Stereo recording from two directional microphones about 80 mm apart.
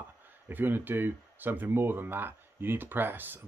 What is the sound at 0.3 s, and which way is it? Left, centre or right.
Speech, right.